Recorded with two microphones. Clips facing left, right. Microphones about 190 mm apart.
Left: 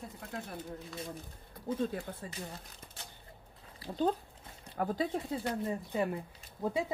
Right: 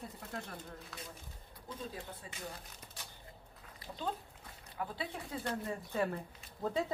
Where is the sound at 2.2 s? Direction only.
45° left (ahead or behind).